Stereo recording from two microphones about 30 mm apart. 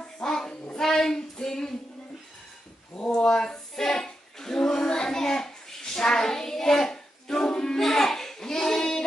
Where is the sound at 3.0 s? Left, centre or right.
Left.